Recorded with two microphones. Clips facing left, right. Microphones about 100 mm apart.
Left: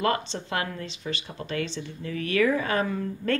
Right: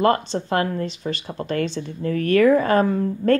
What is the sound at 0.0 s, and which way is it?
A woman's voice, 40° right (ahead or behind).